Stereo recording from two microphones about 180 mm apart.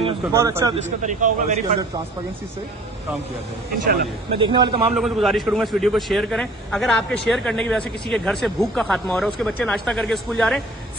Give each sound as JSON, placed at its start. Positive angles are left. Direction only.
{"t": 0.3, "sound": "speech", "side_deg": -15}
{"t": 0.8, "sound": "a man's voice", "side_deg": -40}
{"t": 3.8, "sound": "a man's voice", "side_deg": -55}
{"t": 4.4, "sound": "a man's voice", "side_deg": -25}
{"t": 4.9, "sound": "a man's voice", "side_deg": 0}